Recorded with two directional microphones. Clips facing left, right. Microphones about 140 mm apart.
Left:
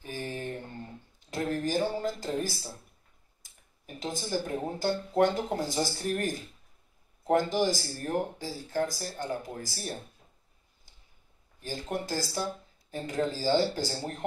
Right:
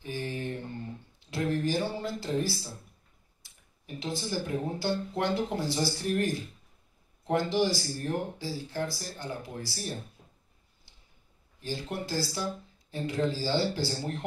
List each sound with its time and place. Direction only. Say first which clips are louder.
0.0 s mantra: right 1 dB; 40° left (ahead or behind)
1.3 s a sound: right 1 dB; 45° left (ahead or behind)
3.4 s speech: right 2 dB; 45° left (ahead or behind)
11.6 s speech: left 1 dB; 45° left (ahead or behind)